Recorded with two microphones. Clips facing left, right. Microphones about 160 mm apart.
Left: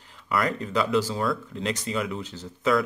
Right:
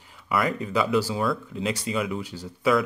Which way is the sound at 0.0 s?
10° right (ahead or behind).